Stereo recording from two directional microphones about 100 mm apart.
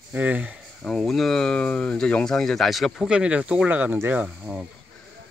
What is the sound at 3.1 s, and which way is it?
Speech, 10° right (ahead or behind).